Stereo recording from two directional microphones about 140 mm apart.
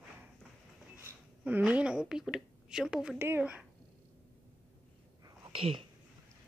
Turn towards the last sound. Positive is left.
turn(degrees=-40)  # may be behind; listen again after turning